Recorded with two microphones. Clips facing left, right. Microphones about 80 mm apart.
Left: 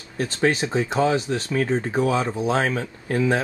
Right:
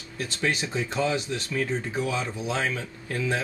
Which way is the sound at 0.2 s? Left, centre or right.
Left.